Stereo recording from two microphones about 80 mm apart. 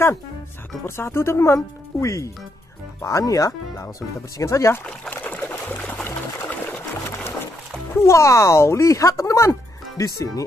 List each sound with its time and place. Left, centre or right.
0.8 s speech: left
5.1 s pour: left
7.9 s speech: left